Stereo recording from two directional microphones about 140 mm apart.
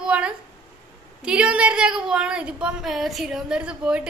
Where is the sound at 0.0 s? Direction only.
5° right (ahead or behind).